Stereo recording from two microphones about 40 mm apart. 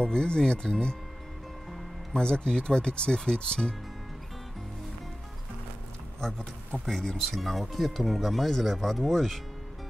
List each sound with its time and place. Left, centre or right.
0.0 s speech: left
2.1 s speech: left
6.9 s speech: centre